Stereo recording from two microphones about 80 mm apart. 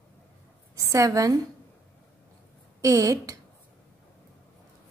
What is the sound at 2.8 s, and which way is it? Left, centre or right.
Speech, right.